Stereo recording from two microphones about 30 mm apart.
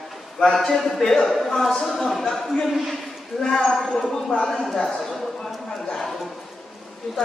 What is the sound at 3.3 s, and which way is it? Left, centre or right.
Speech, left.